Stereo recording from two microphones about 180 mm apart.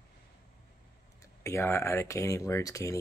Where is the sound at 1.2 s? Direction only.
15° left (ahead or behind).